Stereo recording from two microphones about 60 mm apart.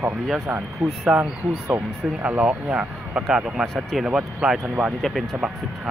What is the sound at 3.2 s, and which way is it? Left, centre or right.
Speech, centre.